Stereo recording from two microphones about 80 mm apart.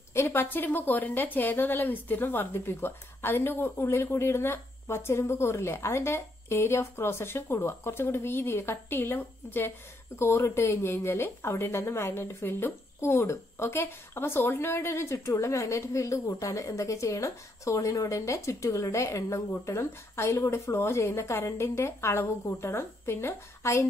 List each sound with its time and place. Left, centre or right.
0.1 s a woman's voice: left